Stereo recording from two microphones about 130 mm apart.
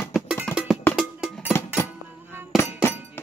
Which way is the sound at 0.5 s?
15° left (ahead or behind).